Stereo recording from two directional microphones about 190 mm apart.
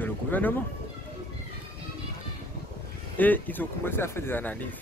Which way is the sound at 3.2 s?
10° left (ahead or behind).